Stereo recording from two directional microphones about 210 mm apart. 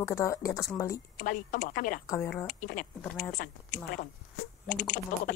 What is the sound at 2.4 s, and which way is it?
Speech, 40° left (ahead or behind).